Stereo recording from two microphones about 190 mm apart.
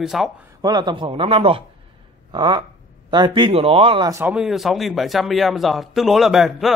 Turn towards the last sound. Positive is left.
turn(degrees=0)  # may be behind; listen again after turning